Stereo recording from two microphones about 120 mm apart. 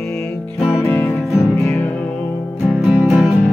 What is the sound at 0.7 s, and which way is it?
Music, 15° left (ahead or behind).